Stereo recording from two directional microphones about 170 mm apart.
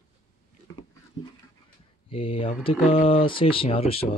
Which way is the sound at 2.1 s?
35° left (ahead or behind).